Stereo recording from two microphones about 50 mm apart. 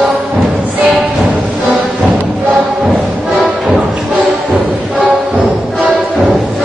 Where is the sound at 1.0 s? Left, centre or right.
Right.